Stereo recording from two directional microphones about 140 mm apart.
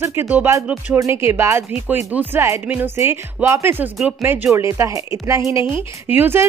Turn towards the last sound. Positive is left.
turn(degrees=-15)  # may be behind; listen again after turning